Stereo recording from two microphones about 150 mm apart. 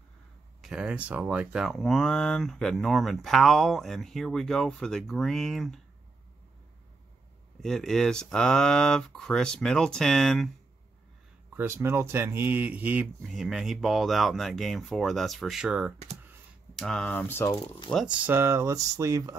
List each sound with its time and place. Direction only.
0.6 s speech: 5° right (ahead or behind)
7.6 s speech: centre (ahead or behind)
11.5 s speech: 15° right (ahead or behind)
16.7 s speech: 5° left (ahead or behind)
17.5 s speech: 30° left (ahead or behind)
17.9 s speech: 5° right (ahead or behind)